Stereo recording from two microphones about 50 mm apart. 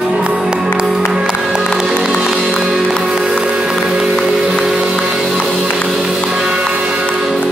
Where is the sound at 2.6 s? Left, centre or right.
Centre.